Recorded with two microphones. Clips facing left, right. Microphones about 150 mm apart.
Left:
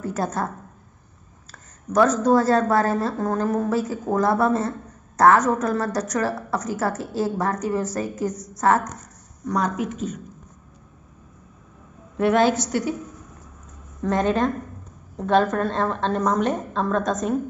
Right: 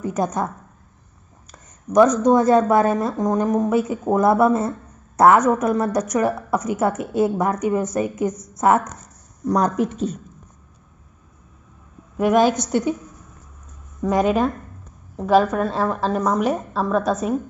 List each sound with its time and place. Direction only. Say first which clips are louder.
0.0 s a woman's voice: right 3 dB; 15° right (ahead or behind)
1.5 s a woman's voice: right 4 dB; 15° right (ahead or behind)
9.5 s a woman's voice: right 5 dB; 35° right (ahead or behind)
12.2 s a woman's voice: right 2 dB; 15° right (ahead or behind)
14.0 s a woman's voice: right 2 dB; 10° right (ahead or behind)